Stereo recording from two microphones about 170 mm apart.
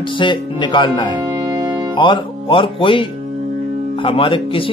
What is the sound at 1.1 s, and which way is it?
Music, 25° right (ahead or behind).